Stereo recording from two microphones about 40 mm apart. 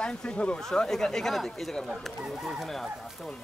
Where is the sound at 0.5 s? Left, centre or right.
Centre.